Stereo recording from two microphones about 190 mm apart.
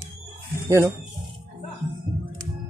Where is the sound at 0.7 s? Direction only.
15° right (ahead or behind).